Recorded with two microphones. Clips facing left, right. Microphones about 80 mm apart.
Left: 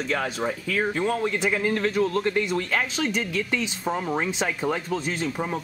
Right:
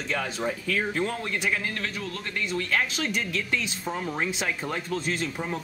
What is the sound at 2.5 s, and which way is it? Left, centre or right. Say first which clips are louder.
A man's voice: left 2 dB; centre.